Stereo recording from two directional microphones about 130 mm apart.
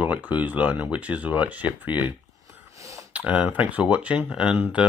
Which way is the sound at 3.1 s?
10° right (ahead or behind).